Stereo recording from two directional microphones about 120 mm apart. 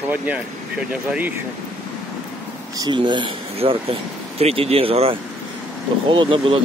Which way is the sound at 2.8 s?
40° right (ahead or behind).